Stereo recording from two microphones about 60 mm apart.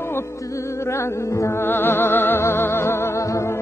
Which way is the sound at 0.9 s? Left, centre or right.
Left.